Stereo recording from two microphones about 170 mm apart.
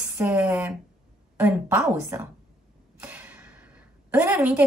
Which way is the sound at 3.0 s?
10° right (ahead or behind).